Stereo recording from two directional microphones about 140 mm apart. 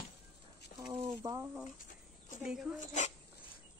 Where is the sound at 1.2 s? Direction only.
30° right (ahead or behind).